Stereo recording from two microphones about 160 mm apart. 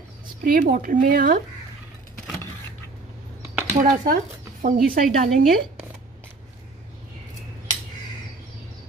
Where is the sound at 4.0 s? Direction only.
60° right (ahead or behind).